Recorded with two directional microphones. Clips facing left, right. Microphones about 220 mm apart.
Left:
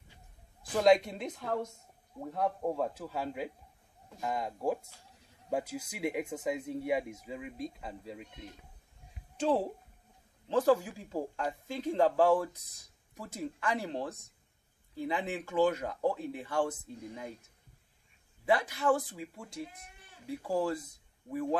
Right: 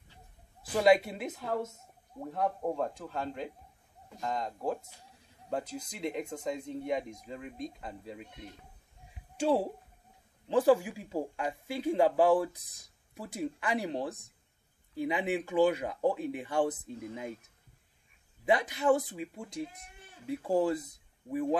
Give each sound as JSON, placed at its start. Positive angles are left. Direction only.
{"t": 0.7, "sound": "speech", "side_deg": -5}
{"t": 9.4, "sound": "speech", "side_deg": -10}
{"t": 18.4, "sound": "speech", "side_deg": -20}